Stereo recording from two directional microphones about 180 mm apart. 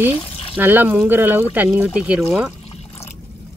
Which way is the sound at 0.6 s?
10° right (ahead or behind).